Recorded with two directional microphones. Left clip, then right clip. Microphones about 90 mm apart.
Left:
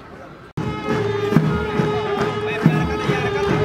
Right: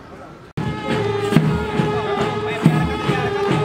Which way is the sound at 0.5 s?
5° left (ahead or behind).